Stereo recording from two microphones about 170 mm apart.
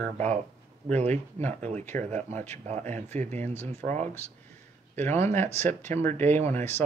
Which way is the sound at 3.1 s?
45° right (ahead or behind).